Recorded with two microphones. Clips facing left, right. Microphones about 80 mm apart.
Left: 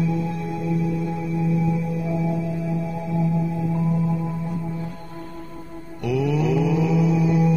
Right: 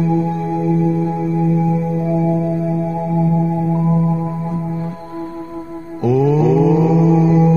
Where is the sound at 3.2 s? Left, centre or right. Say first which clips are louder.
Right 6 dB; right.